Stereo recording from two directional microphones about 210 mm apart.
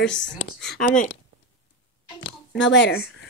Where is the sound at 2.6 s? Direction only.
60° left (ahead or behind).